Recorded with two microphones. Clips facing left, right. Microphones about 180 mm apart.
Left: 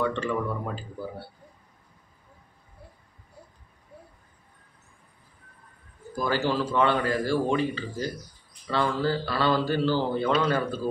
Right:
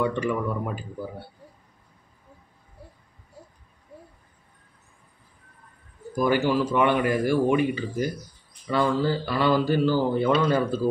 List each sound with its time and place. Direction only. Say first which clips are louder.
0.0 s speech: right 2 dB; 15° right (ahead or behind)
6.1 s speech: right 4 dB; 15° right (ahead or behind)